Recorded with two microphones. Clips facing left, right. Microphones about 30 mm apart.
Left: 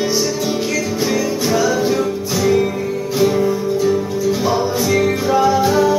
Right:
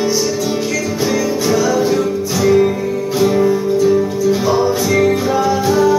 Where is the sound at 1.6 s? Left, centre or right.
Centre.